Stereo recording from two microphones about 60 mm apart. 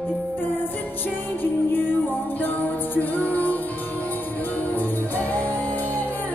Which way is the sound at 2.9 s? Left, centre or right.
Left.